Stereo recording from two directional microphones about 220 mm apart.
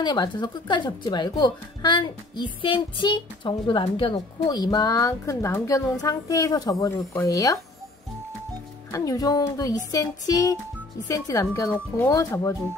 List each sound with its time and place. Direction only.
0.0 s speech: 20° left (ahead or behind)
8.9 s speech: 15° left (ahead or behind)